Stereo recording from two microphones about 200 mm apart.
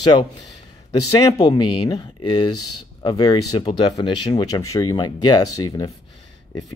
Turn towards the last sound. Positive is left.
turn(degrees=20)  # may be behind; listen again after turning